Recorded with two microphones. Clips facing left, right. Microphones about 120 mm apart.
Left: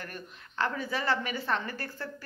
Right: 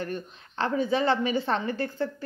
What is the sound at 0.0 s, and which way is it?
A woman's voice, 25° right (ahead or behind).